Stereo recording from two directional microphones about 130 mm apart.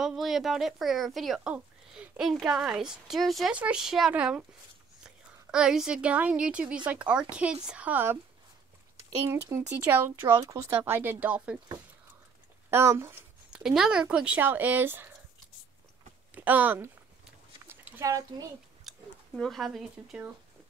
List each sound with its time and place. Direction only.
0.0 s a woman's voice: 5° right (ahead or behind)
9.2 s speech: 20° right (ahead or behind)
12.6 s speech: 20° right (ahead or behind)
13.5 s speech: 5° right (ahead or behind)
16.3 s speech: 15° right (ahead or behind)
17.6 s a sound: 15° right (ahead or behind)
18.9 s speech: centre (ahead or behind)